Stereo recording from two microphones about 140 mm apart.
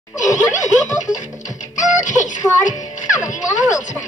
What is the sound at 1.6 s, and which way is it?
Music, 60° left (ahead or behind).